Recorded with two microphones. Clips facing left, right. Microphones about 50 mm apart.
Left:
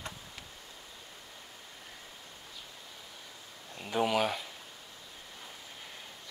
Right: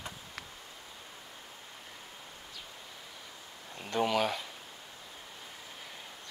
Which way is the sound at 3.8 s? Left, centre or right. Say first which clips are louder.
Even; centre.